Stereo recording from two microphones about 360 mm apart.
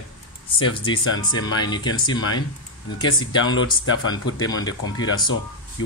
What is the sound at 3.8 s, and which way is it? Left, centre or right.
Speech, left.